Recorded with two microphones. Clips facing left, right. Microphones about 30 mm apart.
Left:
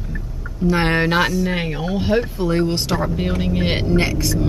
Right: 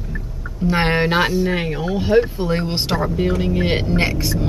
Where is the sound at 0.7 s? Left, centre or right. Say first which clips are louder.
Even; centre.